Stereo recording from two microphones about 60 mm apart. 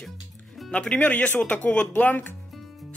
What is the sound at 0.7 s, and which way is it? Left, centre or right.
Speech, centre.